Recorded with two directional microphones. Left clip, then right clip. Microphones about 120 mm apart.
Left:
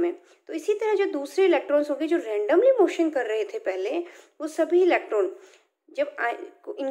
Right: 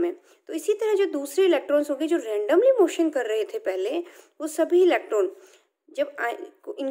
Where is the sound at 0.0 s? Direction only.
50° right (ahead or behind).